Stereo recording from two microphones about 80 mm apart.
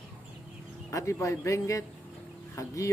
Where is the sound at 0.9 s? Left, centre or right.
Left.